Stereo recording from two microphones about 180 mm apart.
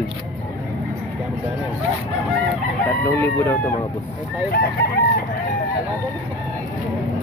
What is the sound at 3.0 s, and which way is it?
Speech, 15° left (ahead or behind).